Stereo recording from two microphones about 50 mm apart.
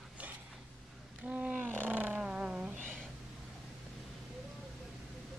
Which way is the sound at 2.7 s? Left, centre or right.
Right.